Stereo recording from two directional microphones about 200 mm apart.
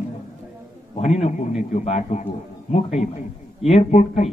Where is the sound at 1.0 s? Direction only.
35° left (ahead or behind).